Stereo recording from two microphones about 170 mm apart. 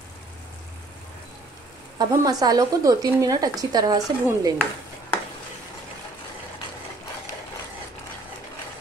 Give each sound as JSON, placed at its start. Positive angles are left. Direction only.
{"t": 2.0, "sound": "speech", "side_deg": -20}